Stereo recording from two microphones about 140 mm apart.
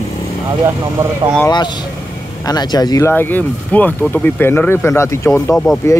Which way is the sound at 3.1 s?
15° left (ahead or behind).